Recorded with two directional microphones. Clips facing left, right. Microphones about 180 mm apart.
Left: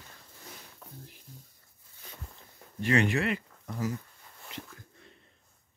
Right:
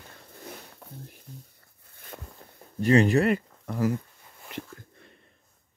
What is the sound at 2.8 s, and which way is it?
Speech, 35° right (ahead or behind).